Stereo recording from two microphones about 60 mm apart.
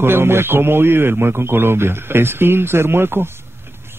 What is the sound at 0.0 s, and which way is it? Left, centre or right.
A man's voice, right.